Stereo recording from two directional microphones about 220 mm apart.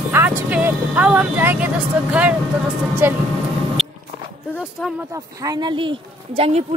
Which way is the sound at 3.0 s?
10° right (ahead or behind).